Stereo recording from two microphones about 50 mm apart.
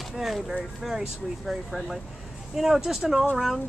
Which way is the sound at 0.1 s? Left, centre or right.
Centre.